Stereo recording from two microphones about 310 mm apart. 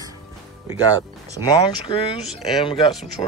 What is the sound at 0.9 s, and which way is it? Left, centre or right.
Speech, centre.